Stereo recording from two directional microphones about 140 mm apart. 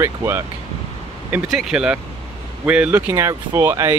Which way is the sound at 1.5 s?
5° right (ahead or behind).